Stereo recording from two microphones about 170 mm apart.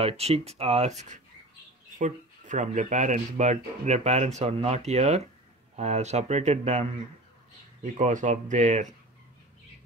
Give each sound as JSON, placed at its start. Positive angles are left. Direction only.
{"t": 0.0, "sound": "speech", "side_deg": -35}